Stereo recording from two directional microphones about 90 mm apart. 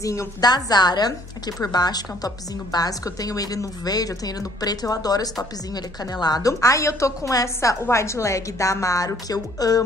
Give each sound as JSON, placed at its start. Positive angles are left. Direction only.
{"t": 0.0, "sound": "a woman's voice", "side_deg": 35}
{"t": 0.4, "sound": "a woman's voice", "side_deg": 50}